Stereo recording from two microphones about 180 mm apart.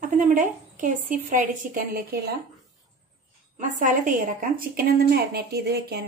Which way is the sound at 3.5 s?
45° right (ahead or behind).